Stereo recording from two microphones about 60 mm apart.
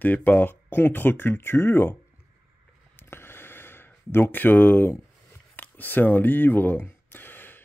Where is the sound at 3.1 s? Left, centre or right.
Left.